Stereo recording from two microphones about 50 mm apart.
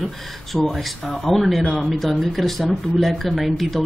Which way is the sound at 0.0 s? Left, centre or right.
Centre.